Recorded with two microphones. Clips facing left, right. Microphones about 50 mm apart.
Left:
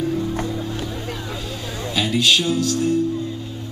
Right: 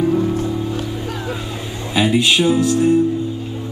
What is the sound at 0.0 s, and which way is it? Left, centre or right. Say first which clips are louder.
Music: right 6 dB; right.